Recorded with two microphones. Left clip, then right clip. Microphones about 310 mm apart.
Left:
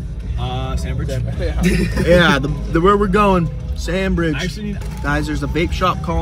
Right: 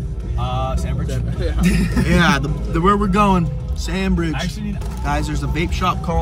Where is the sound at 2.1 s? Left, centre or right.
Centre.